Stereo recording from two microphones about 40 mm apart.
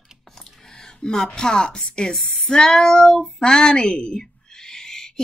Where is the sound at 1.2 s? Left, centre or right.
Centre.